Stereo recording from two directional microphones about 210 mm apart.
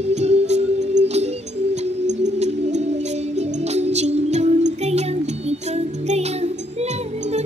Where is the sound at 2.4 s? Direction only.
35° right (ahead or behind).